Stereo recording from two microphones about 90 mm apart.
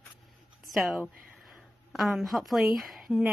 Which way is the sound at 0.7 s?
Centre (ahead or behind).